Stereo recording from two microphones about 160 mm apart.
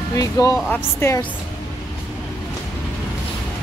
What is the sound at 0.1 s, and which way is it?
Speech, 20° left (ahead or behind).